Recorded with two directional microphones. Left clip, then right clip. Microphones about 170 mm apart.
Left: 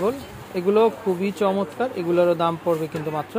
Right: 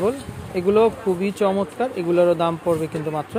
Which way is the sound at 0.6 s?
15° right (ahead or behind).